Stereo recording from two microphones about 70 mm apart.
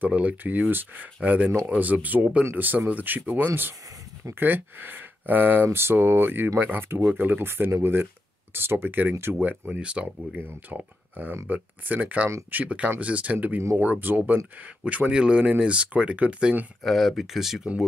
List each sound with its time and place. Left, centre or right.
0.0 s speech: centre
14.9 s speech: centre
16.8 s speech: centre